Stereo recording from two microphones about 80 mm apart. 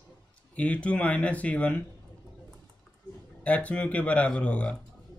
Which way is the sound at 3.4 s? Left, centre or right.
Centre.